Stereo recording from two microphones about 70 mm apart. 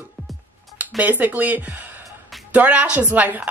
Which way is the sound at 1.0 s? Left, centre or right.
Right.